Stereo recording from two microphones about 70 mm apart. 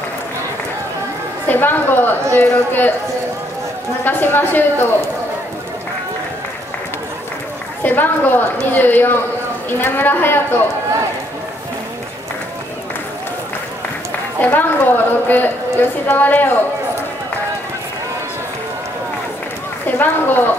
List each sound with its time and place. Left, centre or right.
1.5 s a woman's voice: left
4.0 s a woman's voice: left
7.8 s a woman's voice: left
14.4 s a woman's voice: left
20.0 s a woman's voice: left